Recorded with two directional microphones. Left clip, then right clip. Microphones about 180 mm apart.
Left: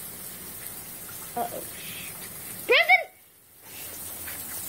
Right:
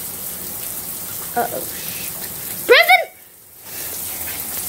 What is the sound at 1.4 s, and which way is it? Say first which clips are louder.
Speech: right 10 dB; 10° right (ahead or behind).